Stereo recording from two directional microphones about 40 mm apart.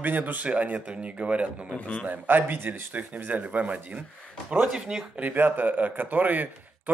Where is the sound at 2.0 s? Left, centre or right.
Right.